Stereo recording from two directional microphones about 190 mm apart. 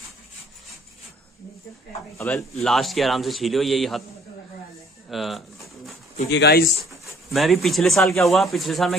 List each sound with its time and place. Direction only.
2.1 s speech: 5° left (ahead or behind)
5.1 s speech: centre (ahead or behind)
6.3 s speech: 60° left (ahead or behind)
7.3 s speech: centre (ahead or behind)